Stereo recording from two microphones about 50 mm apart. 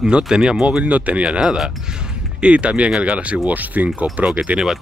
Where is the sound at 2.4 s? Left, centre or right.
Right.